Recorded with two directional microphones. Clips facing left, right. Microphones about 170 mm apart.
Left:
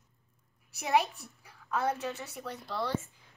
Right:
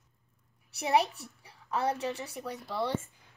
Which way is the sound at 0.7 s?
35° right (ahead or behind).